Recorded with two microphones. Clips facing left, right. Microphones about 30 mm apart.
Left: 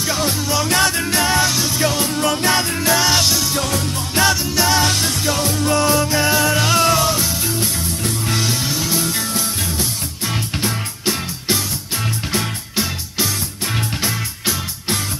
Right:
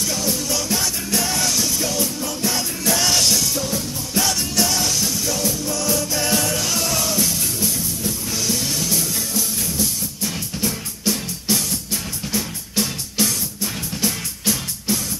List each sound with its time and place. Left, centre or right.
0.0 s music: left
0.7 s music: left
1.8 s music: left
2.1 s music: left
2.9 s music: centre
4.8 s music: left
5.9 s music: left
6.2 s music: left
6.5 s music: left
8.0 s music: left
8.5 s music: left
9.0 s music: left